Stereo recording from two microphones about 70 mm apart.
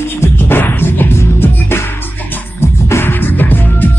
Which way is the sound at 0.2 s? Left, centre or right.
Left.